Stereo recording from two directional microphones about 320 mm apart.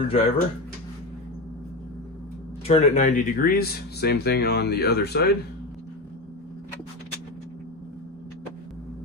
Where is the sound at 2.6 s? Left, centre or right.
Centre.